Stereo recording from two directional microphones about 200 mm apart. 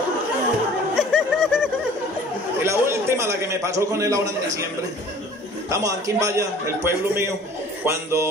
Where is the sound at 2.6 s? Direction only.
15° right (ahead or behind).